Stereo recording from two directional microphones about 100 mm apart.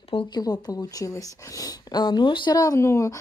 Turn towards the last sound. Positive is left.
turn(degrees=30)  # may be behind; listen again after turning